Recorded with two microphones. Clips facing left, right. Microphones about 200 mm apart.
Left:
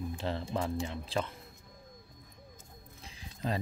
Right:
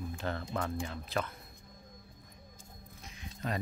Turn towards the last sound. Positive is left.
turn(degrees=30)  # may be behind; listen again after turning